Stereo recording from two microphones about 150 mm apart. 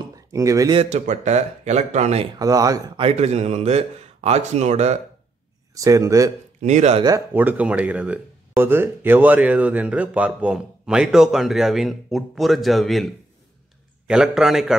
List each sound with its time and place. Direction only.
0.1 s a sound: 20° right (ahead or behind)
0.7 s a man's voice: 50° right (ahead or behind)
2.3 s speech: 25° right (ahead or behind)
3.0 s a man's voice: 45° right (ahead or behind)
5.8 s speech: 20° right (ahead or behind)
6.6 s a man's voice: 50° right (ahead or behind)
7.0 s speech: 25° right (ahead or behind)
7.3 s a man's voice: 10° right (ahead or behind)